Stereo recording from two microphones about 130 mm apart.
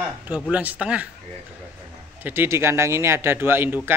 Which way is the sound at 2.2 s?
20° right (ahead or behind).